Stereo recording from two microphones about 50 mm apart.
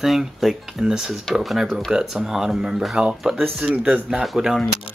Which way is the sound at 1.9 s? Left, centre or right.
Centre.